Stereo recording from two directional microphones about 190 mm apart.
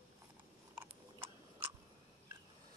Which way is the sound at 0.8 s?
10° right (ahead or behind).